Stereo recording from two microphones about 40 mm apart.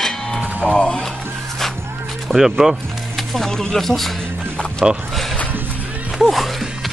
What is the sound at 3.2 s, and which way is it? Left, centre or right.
Speech, centre.